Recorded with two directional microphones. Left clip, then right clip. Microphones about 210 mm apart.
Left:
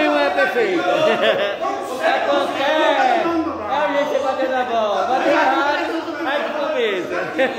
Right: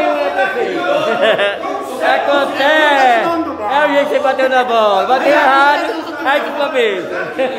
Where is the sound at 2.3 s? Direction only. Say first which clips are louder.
Right 6 dB; 30° right (ahead or behind).